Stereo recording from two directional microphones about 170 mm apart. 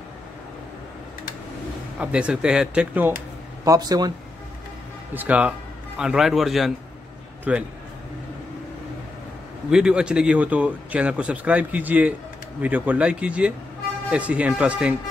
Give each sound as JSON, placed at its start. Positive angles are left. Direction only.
{"t": 2.0, "sound": "a man's voice", "side_deg": -5}
{"t": 3.6, "sound": "speech", "side_deg": -20}
{"t": 5.1, "sound": "a man's voice", "side_deg": -10}
{"t": 9.7, "sound": "a man's voice", "side_deg": -5}